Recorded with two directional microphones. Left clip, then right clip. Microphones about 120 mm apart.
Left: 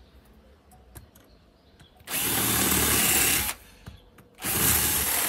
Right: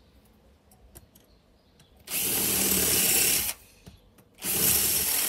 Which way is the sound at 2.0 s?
25° left (ahead or behind).